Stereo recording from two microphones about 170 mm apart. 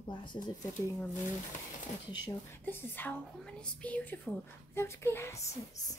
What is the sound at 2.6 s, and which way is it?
Speech, 10° left (ahead or behind).